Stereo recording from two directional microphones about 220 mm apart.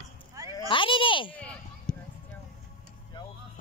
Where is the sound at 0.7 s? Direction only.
25° left (ahead or behind).